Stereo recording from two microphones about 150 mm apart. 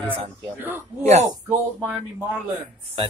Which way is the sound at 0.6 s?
15° right (ahead or behind).